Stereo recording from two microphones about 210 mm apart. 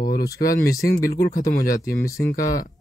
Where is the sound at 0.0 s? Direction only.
45° left (ahead or behind).